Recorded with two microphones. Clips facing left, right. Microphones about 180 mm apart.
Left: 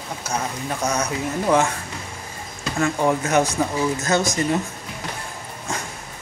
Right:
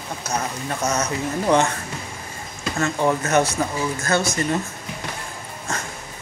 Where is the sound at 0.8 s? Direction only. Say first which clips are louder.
Even; 10° left (ahead or behind).